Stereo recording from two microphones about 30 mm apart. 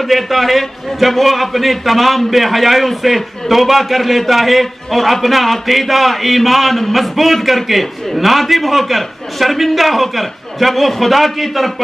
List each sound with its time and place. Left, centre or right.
0.0 s a man's voice: centre